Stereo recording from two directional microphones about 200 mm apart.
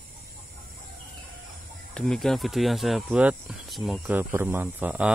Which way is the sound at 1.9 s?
5° left (ahead or behind).